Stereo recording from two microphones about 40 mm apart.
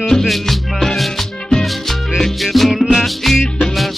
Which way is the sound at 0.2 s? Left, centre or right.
Centre.